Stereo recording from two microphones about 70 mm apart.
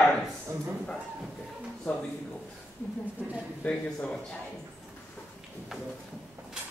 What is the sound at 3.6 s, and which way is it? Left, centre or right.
Speech, centre.